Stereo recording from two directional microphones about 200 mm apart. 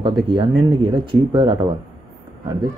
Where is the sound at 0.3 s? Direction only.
25° right (ahead or behind).